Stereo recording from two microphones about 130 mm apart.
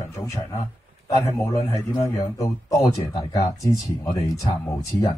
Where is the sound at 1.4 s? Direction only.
25° left (ahead or behind).